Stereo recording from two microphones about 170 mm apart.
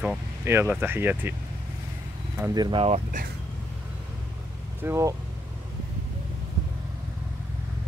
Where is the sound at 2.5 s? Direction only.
25° right (ahead or behind).